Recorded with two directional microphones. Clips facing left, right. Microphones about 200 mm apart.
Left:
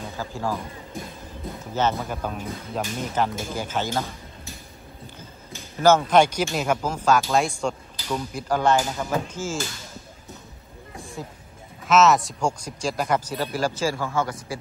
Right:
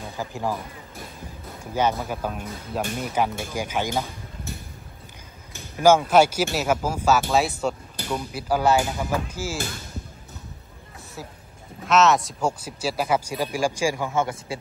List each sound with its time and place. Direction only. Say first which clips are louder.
0.2 s speech: right 1 dB; 15° right (ahead or behind)
1.6 s speech: right 1 dB; 10° right (ahead or behind)
5.8 s speech: right 1 dB; 10° right (ahead or behind)
11.2 s speech: right 2 dB; 5° right (ahead or behind)